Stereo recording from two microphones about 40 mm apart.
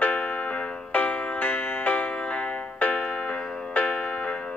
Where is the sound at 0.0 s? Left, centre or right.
Left.